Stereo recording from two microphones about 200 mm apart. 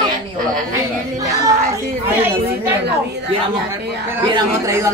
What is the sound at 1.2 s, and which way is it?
Speech, 15° right (ahead or behind).